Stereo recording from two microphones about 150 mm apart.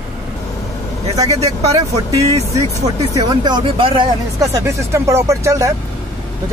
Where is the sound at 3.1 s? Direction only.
30° right (ahead or behind).